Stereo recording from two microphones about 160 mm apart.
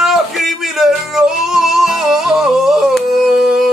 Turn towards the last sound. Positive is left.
turn(degrees=-5)  # may be behind; listen again after turning